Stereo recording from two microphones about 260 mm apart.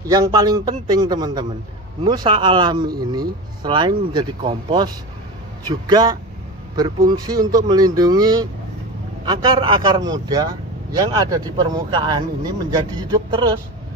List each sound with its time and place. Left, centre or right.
0.1 s a man's voice: centre